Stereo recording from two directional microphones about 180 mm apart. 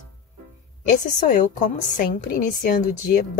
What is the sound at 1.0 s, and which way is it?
A woman's voice, 45° left (ahead or behind).